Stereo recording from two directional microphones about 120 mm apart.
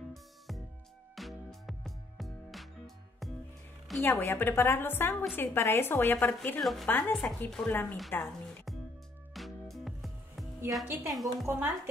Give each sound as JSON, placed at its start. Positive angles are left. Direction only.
{"t": 1.1, "sound": "music", "side_deg": 0}
{"t": 4.0, "sound": "a woman's voice", "side_deg": 20}
{"t": 6.6, "sound": "a woman's voice", "side_deg": 0}
{"t": 6.9, "sound": "a woman's voice", "side_deg": 15}
{"t": 9.3, "sound": "music", "side_deg": 0}
{"t": 10.7, "sound": "a woman's voice", "side_deg": 0}
{"t": 11.4, "sound": "a woman's voice", "side_deg": -15}